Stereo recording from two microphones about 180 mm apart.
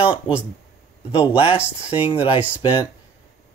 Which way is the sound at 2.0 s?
30° left (ahead or behind).